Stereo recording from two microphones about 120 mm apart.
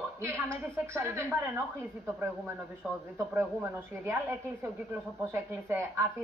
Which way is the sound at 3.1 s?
20° right (ahead or behind).